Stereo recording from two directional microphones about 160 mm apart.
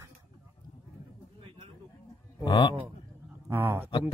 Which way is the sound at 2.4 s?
25° left (ahead or behind).